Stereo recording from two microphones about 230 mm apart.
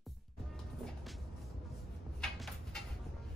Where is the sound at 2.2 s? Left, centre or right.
Centre.